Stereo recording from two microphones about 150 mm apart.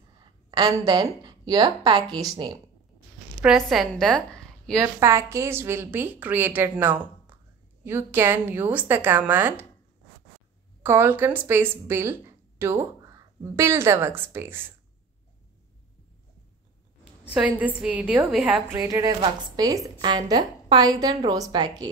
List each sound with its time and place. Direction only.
0.5 s a woman's voice: 30° right (ahead or behind)
3.4 s a woman's voice: centre (ahead or behind)
5.0 s a woman's voice: 20° right (ahead or behind)
10.8 s speech: 15° right (ahead or behind)
17.3 s a woman's voice: 10° right (ahead or behind); by 21.9 s 25° right (ahead or behind)